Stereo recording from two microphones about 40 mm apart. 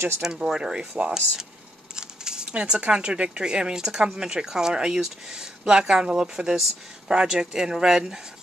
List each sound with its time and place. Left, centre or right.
0.2 s speech: centre